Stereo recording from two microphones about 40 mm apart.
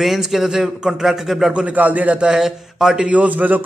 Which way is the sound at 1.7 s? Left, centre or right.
Right.